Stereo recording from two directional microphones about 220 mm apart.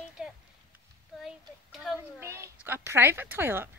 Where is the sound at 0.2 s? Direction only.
5° right (ahead or behind).